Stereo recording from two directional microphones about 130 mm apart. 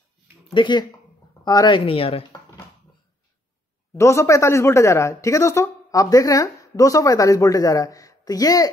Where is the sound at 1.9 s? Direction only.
45° left (ahead or behind).